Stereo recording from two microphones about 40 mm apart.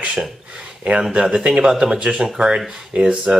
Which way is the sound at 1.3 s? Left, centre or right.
Right.